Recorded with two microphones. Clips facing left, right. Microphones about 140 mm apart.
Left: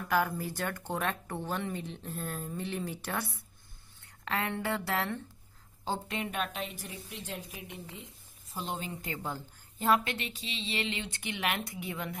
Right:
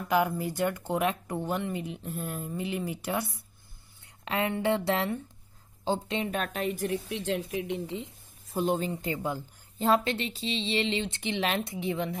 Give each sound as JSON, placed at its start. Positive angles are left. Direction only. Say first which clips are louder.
{"t": 0.6, "sound": "speech", "louder": "right 8 dB", "side_deg": -10}
{"t": 6.3, "sound": "a woman's voice", "louder": "right 5 dB", "side_deg": -45}
{"t": 6.9, "sound": "speech", "louder": "right 12 dB", "side_deg": -80}
{"t": 8.6, "sound": "speech", "louder": "right 10 dB", "side_deg": -40}
{"t": 9.0, "sound": "speech", "louder": "right 6 dB", "side_deg": -20}
{"t": 9.8, "sound": "speech", "louder": "right 3 dB", "side_deg": -30}